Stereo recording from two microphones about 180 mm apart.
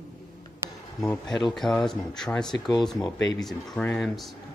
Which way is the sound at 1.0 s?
5° left (ahead or behind).